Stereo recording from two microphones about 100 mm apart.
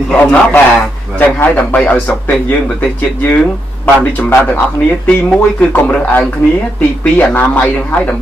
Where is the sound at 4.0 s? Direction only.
15° left (ahead or behind).